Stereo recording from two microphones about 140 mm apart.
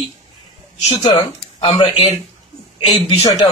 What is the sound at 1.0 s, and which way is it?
Speech, 40° left (ahead or behind).